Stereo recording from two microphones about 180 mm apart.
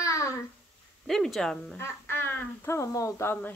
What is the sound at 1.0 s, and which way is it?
Speech, centre (ahead or behind).